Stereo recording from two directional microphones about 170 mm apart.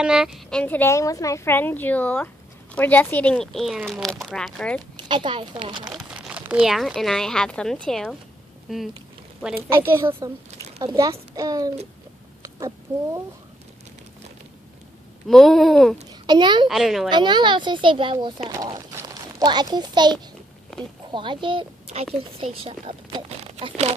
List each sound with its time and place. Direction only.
0.0 s a woman's voice: 5° right (ahead or behind)
4.9 s speech: 30° right (ahead or behind)
5.9 s speech: 5° right (ahead or behind)
9.4 s a woman's voice: 15° right (ahead or behind)
15.2 s a sound: centre (ahead or behind)
16.1 s a child's voice: 25° right (ahead or behind)
16.6 s a sound: centre (ahead or behind)
17.1 s a child's voice: 25° right (ahead or behind)